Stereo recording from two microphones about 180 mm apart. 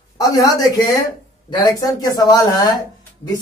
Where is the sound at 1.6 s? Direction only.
20° left (ahead or behind).